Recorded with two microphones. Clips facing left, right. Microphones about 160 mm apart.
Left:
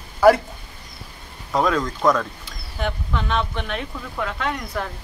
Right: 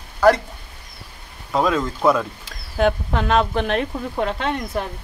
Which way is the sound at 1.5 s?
5° right (ahead or behind).